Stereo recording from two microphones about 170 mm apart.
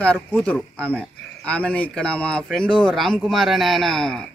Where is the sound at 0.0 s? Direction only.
5° left (ahead or behind).